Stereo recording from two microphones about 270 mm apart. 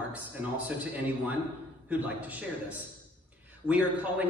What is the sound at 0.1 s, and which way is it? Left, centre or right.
Speech, centre.